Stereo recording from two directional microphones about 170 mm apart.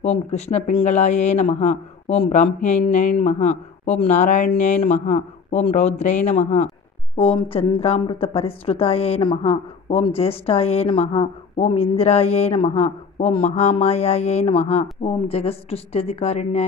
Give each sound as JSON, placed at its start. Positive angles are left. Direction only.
{"t": 0.0, "sound": "speech", "side_deg": 40}
{"t": 7.2, "sound": "a woman's voice", "side_deg": 35}